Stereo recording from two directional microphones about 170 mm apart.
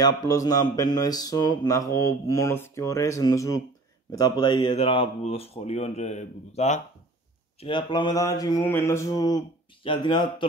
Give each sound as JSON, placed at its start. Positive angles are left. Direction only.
{"t": 0.0, "sound": "speech", "side_deg": 20}
{"t": 7.6, "sound": "speech", "side_deg": 30}